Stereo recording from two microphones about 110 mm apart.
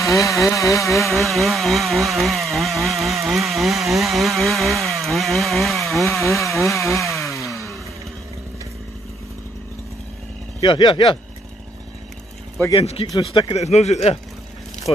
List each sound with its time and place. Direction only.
0.0 s a sound: 30° left (ahead or behind)
1.0 s chainsaw: centre (ahead or behind)
6.7 s chainsaw: 25° left (ahead or behind)
7.3 s a sound: 30° left (ahead or behind)
10.6 s speech: 45° left (ahead or behind)
12.7 s speech: 60° left (ahead or behind)
13.6 s speech: 85° left